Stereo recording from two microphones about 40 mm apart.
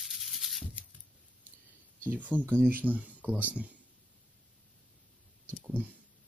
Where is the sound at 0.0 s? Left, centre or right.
Centre.